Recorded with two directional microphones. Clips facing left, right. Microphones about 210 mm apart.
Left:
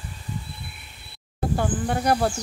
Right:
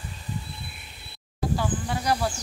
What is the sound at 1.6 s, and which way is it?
Speech, 50° left (ahead or behind).